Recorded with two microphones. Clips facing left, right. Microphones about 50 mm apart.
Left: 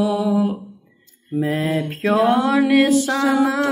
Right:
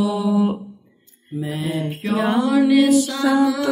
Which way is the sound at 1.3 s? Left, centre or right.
Left.